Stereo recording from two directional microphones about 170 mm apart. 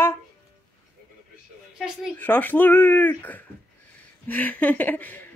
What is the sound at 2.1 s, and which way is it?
Speech, 10° left (ahead or behind).